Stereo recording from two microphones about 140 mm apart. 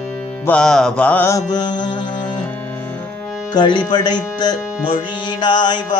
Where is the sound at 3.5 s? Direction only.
30° left (ahead or behind).